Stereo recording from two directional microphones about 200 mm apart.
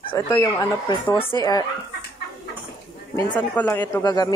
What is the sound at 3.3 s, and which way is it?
Speech, 10° left (ahead or behind).